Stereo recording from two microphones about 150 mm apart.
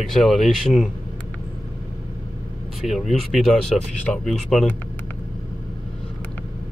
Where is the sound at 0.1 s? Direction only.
Centre (ahead or behind).